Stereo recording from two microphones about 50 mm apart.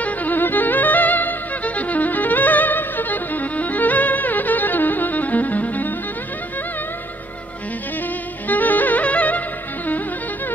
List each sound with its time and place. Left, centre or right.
0.0 s music: left
8.5 s music: left